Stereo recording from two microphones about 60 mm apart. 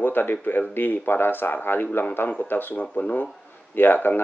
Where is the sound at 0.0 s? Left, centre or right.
Left.